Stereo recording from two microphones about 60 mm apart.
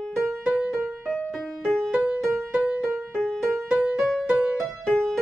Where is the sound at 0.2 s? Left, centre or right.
Centre.